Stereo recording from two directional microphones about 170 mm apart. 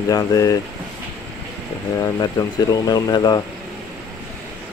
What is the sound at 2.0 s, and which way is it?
Speech, 20° left (ahead or behind).